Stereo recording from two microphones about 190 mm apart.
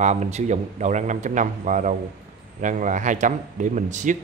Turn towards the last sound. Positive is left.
turn(degrees=-40)  # may be behind; listen again after turning